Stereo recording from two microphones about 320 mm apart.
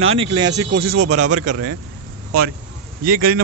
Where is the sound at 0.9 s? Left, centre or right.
Right.